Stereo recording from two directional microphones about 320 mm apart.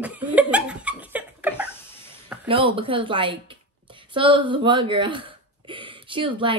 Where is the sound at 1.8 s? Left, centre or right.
Centre.